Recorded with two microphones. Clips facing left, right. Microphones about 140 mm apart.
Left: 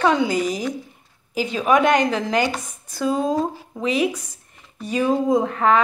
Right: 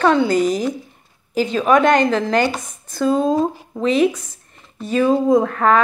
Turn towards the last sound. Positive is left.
turn(degrees=-55)  # may be behind; listen again after turning